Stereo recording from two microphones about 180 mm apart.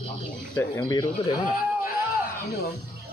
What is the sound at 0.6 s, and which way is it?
Speech, 10° left (ahead or behind).